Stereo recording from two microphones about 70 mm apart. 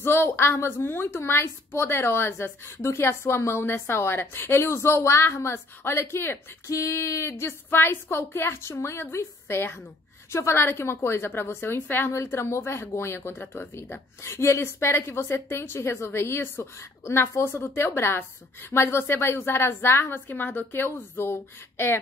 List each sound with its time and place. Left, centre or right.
0.0 s a woman's voice: left
14.2 s a woman's voice: left